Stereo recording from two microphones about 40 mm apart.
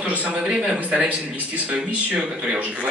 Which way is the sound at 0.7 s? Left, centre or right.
Right.